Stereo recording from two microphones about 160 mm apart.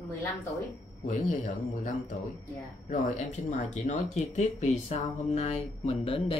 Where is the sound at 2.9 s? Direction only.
45° left (ahead or behind).